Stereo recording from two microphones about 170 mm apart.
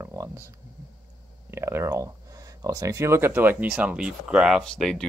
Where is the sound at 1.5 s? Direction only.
15° right (ahead or behind).